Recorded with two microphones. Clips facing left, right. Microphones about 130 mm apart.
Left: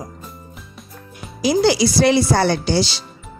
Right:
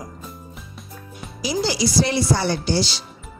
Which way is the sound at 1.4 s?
60° left (ahead or behind).